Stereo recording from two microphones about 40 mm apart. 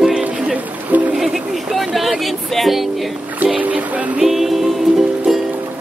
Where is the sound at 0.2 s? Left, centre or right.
Right.